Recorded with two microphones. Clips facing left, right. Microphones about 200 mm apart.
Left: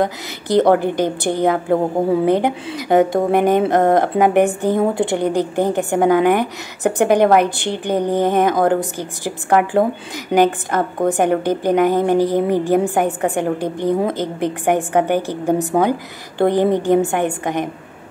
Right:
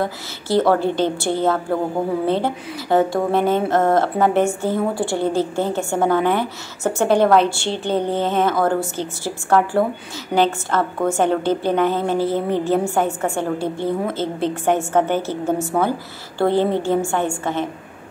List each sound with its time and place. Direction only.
0.0 s a woman's voice: 20° left (ahead or behind)